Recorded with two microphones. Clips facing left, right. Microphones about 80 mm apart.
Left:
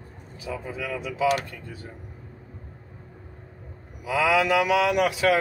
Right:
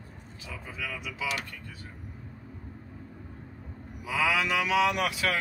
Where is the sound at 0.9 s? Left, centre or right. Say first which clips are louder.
Left 8 dB; left.